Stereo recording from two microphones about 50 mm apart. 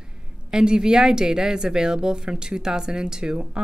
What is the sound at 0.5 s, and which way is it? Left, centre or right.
A woman's voice, centre.